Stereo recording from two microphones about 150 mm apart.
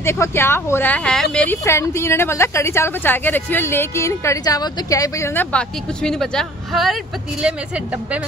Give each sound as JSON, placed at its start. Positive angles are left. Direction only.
{"t": 0.0, "sound": "a woman's voice", "side_deg": 15}
{"t": 1.6, "sound": "a woman's voice", "side_deg": 20}